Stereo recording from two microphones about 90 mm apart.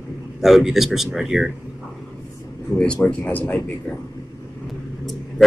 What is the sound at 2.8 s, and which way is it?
Speech, 15° left (ahead or behind).